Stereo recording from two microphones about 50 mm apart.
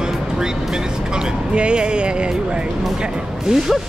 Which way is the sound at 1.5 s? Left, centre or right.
Right.